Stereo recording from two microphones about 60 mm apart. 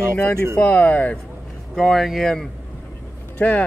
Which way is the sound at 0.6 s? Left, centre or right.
Left.